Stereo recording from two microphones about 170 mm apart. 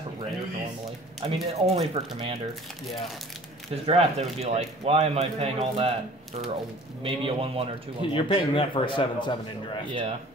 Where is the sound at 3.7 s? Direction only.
35° right (ahead or behind).